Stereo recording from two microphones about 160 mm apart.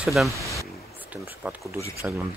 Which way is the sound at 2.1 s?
10° right (ahead or behind).